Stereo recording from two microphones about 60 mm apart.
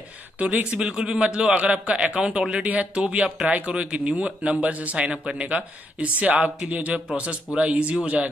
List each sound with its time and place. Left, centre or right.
0.4 s speech: right
0.7 s a man's voice: centre